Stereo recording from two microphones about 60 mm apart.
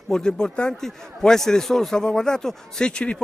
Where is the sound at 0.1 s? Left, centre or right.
Centre.